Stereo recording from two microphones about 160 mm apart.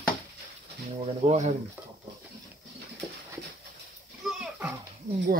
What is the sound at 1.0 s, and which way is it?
Speech, 45° right (ahead or behind).